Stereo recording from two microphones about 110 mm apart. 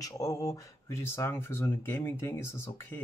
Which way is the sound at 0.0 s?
30° left (ahead or behind).